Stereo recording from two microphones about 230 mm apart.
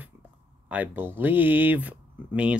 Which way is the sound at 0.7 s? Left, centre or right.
Centre.